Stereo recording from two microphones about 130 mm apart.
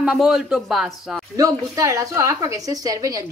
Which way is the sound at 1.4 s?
25° right (ahead or behind).